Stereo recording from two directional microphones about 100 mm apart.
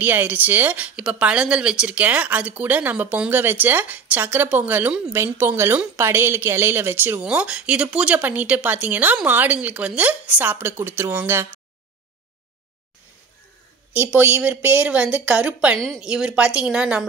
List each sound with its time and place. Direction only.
0.0 s speech: 20° right (ahead or behind)
14.1 s speech: 15° right (ahead or behind)
15.8 s speech: 5° left (ahead or behind)
16.1 s speech: 10° right (ahead or behind)